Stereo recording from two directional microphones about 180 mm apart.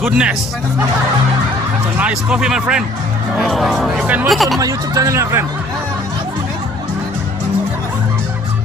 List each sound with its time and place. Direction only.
0.0 s speech: 5° right (ahead or behind)
2.0 s speech: 5° right (ahead or behind)
4.6 s speech: 20° right (ahead or behind)